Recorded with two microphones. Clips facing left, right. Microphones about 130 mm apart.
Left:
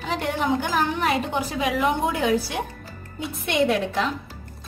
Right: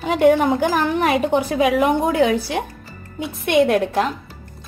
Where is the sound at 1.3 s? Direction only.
55° right (ahead or behind).